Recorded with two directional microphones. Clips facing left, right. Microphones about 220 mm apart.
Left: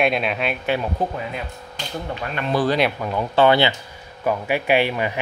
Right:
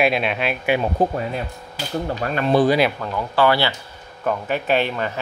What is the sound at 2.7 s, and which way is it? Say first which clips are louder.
Speech: right 2 dB; centre (ahead or behind).